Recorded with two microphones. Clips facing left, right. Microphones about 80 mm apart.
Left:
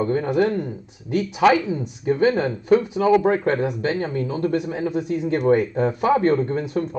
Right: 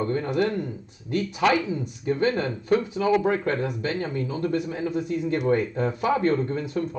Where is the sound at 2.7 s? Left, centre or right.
Left.